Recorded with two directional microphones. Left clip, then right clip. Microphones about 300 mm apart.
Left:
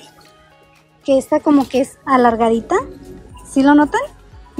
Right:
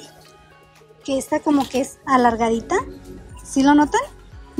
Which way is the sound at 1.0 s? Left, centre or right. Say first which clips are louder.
Left 7 dB; centre.